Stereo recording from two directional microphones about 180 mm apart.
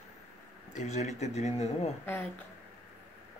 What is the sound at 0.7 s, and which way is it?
Speech, 40° left (ahead or behind).